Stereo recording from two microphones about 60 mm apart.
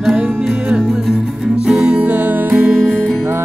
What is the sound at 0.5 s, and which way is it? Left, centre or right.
Music, centre.